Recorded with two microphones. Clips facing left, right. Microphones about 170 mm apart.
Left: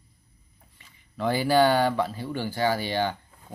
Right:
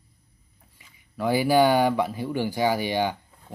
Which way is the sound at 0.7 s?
10° right (ahead or behind).